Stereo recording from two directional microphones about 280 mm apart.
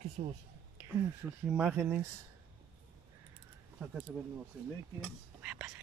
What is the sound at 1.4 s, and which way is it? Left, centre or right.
Speech, centre.